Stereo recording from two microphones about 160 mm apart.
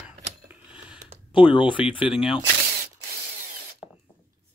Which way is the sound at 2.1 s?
5° right (ahead or behind).